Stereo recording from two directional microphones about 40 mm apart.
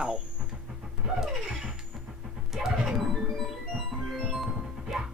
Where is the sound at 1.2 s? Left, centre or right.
Centre.